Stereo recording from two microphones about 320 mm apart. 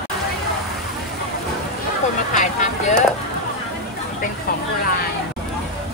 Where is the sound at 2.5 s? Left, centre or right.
Left.